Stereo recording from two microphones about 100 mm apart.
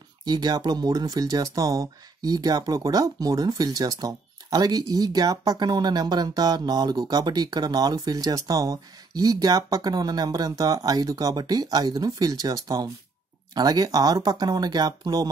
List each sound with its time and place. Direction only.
0.2 s speech: 45° right (ahead or behind)